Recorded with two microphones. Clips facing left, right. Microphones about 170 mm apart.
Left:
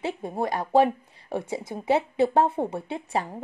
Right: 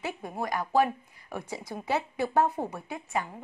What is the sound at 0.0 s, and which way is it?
Speech, 25° left (ahead or behind).